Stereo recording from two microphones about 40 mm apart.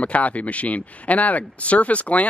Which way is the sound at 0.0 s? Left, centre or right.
Left.